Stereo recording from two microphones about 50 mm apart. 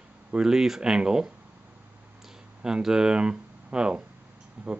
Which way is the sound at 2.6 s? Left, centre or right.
Centre.